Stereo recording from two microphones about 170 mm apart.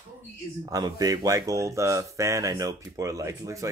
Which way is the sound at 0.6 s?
20° right (ahead or behind).